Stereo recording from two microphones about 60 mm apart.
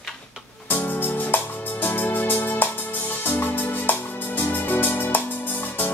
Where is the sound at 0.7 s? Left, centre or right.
Left.